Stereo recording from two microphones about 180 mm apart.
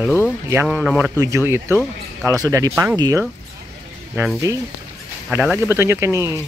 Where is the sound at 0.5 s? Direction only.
10° right (ahead or behind).